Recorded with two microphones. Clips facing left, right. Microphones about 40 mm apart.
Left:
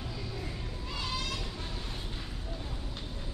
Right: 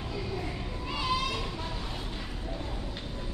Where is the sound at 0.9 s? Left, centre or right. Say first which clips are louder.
Right 6 dB; centre.